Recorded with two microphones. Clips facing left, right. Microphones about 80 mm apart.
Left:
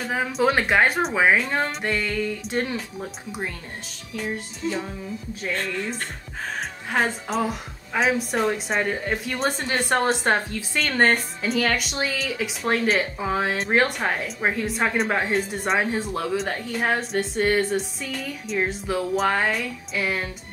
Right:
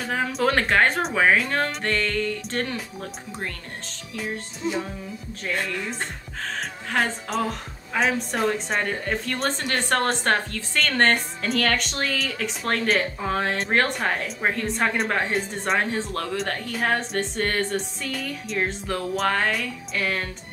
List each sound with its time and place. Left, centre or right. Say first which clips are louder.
0.0 s a woman's voice: left 1 dB; centre
4.6 s music: right 1 dB; right
7.0 s a woman's voice: left 1 dB; centre